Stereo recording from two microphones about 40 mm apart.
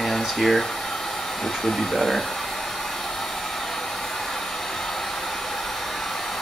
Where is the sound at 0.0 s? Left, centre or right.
Centre.